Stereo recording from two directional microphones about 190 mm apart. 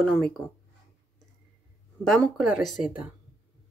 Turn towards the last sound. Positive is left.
turn(degrees=0)  # may be behind; listen again after turning